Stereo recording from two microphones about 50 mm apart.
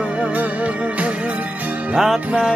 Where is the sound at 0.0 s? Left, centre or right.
Right.